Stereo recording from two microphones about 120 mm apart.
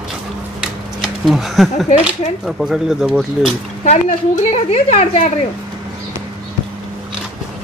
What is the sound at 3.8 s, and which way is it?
A woman's voice, 65° left (ahead or behind).